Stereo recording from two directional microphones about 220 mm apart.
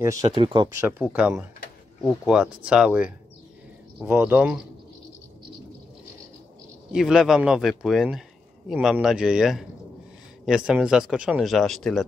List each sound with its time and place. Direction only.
0.0 s speech: 15° right (ahead or behind)
0.8 s speech: 5° right (ahead or behind)
6.9 s speech: centre (ahead or behind)